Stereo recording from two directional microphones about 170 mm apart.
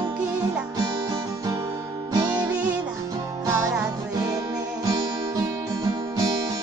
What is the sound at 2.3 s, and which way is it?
Music, 10° right (ahead or behind).